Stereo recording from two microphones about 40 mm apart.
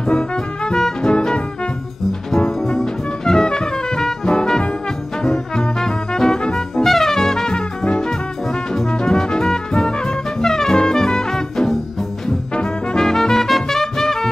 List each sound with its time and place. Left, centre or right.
0.7 s music: centre
2.7 s music: centre
6.8 s brass instrument: centre
7.5 s music: left